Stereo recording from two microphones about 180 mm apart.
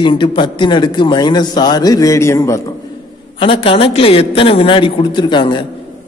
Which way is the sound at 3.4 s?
30° left (ahead or behind).